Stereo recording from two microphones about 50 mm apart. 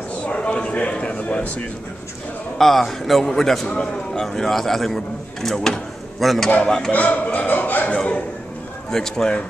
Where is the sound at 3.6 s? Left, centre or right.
Centre.